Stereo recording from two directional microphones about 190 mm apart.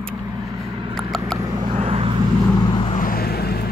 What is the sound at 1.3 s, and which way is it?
Vehicle, 20° right (ahead or behind).